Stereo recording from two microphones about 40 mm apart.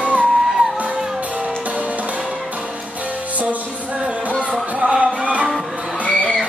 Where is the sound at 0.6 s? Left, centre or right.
Right.